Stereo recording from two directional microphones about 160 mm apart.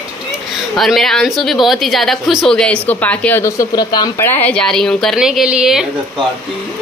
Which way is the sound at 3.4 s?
25° left (ahead or behind).